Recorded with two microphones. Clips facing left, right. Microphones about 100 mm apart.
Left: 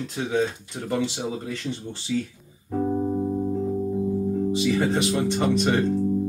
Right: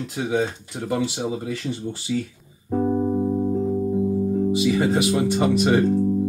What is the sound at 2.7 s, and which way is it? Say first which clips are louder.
Music: right 3 dB; 25° right (ahead or behind).